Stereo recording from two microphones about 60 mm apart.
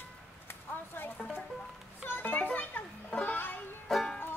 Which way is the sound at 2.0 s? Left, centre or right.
Left.